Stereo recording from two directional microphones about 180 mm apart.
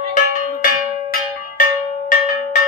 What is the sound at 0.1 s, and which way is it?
Bell, 45° left (ahead or behind).